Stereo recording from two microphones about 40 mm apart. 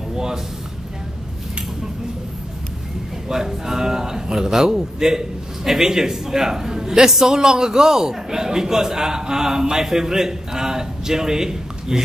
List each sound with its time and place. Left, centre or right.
0.1 s speech: centre
3.3 s a man's voice: centre